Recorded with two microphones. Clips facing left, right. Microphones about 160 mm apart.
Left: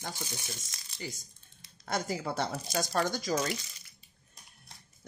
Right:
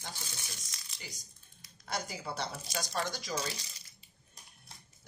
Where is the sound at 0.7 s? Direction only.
50° left (ahead or behind).